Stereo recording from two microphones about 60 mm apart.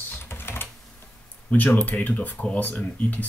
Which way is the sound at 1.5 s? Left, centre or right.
Left.